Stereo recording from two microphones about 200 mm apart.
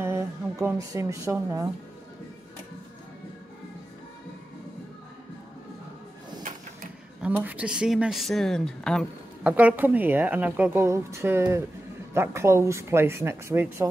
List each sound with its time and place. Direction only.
0.0 s speech: 15° right (ahead or behind)
7.2 s speech: 10° right (ahead or behind)
9.5 s a woman's voice: 10° right (ahead or behind)